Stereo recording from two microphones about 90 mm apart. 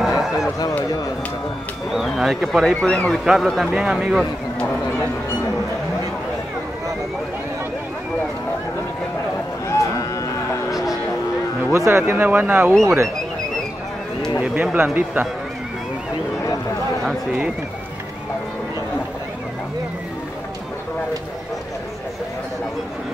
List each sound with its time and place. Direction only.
0.0 s a sound: 5° right (ahead or behind)
1.9 s speech: centre (ahead or behind)
2.7 s a man's voice: 10° left (ahead or behind); by 4.3 s 5° right (ahead or behind)
11.7 s speech: 35° right (ahead or behind)
12.1 s speech: 20° right (ahead or behind)
12.8 s speech: 35° right (ahead or behind)
14.4 s speech: 15° right (ahead or behind)